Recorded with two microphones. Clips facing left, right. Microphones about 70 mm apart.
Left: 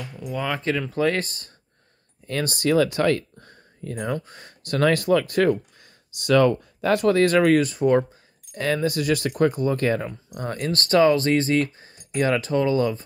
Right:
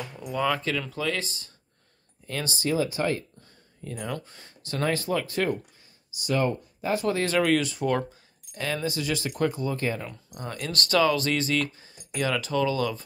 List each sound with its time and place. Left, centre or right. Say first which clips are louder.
0.0 s speech: left 2 dB; centre
0.6 s speech: left 5 dB; left
1.0 s speech: left 7 dB; left
5.8 s a sound: left 2 dB; left
7.1 s speech: left 6 dB; left
10.0 s speech: left 6 dB; left